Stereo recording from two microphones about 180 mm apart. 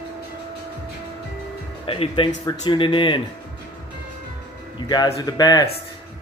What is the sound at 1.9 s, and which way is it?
Speech, 30° left (ahead or behind).